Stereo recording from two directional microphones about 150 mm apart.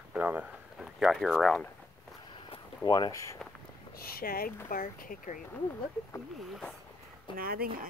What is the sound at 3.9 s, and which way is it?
Speech, 80° left.